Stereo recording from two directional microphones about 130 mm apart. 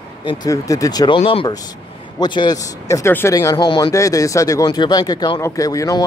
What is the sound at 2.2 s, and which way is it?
Speech, 35° left (ahead or behind).